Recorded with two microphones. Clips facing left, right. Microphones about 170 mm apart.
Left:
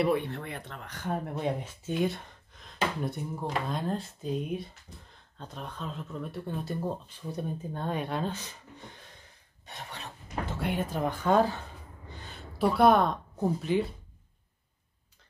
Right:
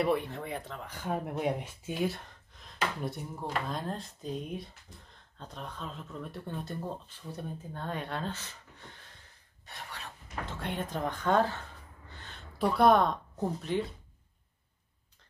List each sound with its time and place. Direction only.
0.0 s speech: centre (ahead or behind); by 8.8 s 15° left (ahead or behind)
9.7 s a sound: 25° left (ahead or behind)
10.6 s speech: 5° left (ahead or behind)